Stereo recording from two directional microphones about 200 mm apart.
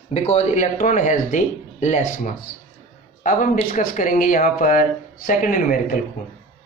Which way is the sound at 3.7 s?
40° left (ahead or behind).